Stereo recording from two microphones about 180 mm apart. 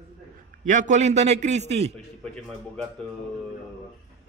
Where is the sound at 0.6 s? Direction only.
45° right (ahead or behind).